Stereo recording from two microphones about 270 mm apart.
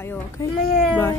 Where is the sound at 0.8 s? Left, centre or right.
Centre.